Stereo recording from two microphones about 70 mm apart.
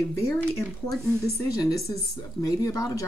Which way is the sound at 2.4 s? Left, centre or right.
Left.